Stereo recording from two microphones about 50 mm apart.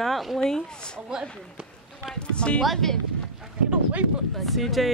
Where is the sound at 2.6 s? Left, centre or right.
Centre.